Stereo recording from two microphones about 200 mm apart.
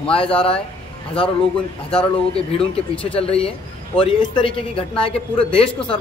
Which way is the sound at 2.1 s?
30° left (ahead or behind).